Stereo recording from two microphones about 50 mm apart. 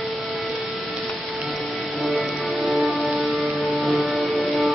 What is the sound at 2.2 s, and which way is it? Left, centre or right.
Music, centre.